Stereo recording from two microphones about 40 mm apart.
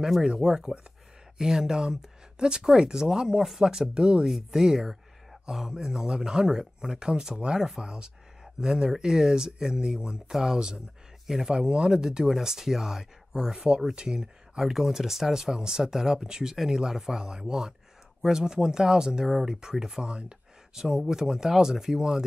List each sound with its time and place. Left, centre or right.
0.4 s speech: centre
14.6 s speech: centre
20.0 s a sound: right
20.8 s speech: centre